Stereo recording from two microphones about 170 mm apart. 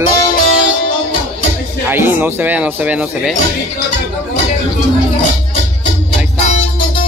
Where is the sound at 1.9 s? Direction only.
15° right (ahead or behind).